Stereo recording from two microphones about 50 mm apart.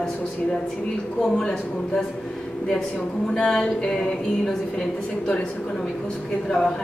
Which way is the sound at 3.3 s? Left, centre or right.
Centre.